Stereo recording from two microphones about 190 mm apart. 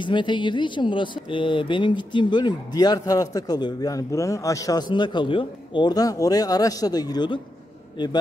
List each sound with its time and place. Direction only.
0.0 s speech: 25° left (ahead or behind)